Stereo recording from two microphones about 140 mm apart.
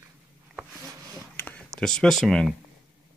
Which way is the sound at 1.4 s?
10° left (ahead or behind).